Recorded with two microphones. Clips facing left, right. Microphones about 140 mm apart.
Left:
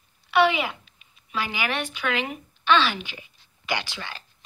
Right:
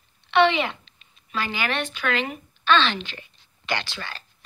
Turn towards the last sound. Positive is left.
turn(degrees=15)  # may be behind; listen again after turning